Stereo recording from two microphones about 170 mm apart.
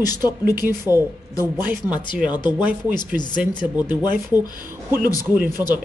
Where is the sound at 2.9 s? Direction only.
25° left (ahead or behind).